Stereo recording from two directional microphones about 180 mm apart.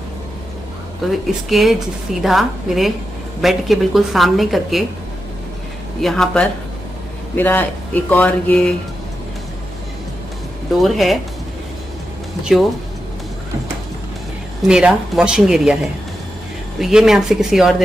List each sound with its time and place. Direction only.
1.0 s speech: centre (ahead or behind)
5.9 s speech: centre (ahead or behind)
10.8 s speech: centre (ahead or behind)
12.5 s speech: centre (ahead or behind)
14.7 s speech: 5° right (ahead or behind)
16.8 s speech: centre (ahead or behind)